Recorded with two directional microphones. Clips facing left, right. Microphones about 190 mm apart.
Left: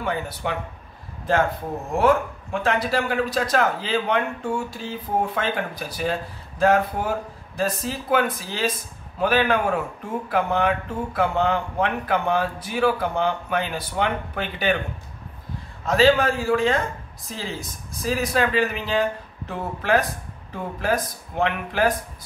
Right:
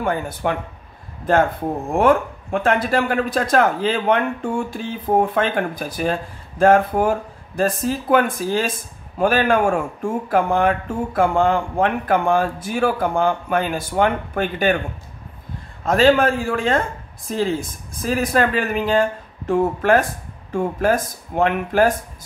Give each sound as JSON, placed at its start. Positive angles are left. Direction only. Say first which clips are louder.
{"t": 0.0, "sound": "speech", "louder": "right 5 dB", "side_deg": -50}
{"t": 2.0, "sound": "speech", "louder": "right 3 dB", "side_deg": -55}
{"t": 15.8, "sound": "speech", "louder": "right 3 dB", "side_deg": -55}